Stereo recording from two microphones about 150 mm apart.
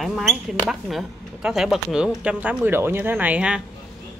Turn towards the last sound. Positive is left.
turn(degrees=-10)  # may be behind; listen again after turning